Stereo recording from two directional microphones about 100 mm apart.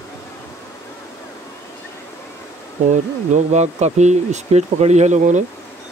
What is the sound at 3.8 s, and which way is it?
Speech, 90° right.